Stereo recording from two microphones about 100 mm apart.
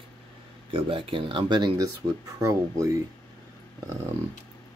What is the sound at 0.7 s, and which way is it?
Speech, 65° right (ahead or behind).